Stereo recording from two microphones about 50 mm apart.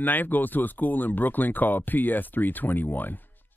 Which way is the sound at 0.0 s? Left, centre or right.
Left.